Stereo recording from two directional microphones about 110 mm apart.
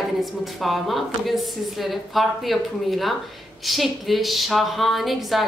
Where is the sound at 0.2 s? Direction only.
Centre (ahead or behind).